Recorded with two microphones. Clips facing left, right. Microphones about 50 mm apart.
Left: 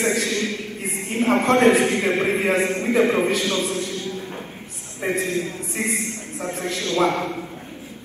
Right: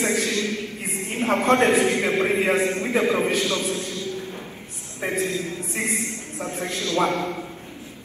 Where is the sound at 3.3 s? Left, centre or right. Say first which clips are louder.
Left 1 dB; left.